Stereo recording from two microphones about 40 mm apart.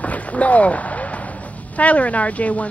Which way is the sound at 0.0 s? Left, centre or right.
Left.